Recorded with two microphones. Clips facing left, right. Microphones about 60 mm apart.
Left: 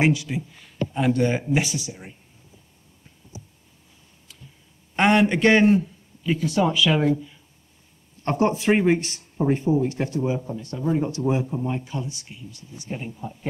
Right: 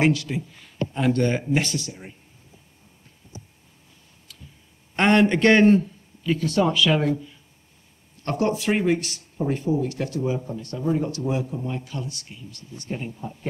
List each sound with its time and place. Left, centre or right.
0.0 s speech: centre
0.4 s speech: centre
4.3 s a sound: centre
4.9 s a man's voice: centre
8.2 s speech: left
11.1 s speech: left; by 13.5 s centre